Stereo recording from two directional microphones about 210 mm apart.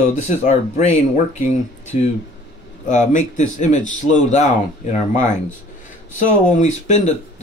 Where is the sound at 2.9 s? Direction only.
35° left (ahead or behind).